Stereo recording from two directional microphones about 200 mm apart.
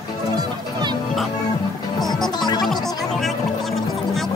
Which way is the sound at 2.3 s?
20° left (ahead or behind).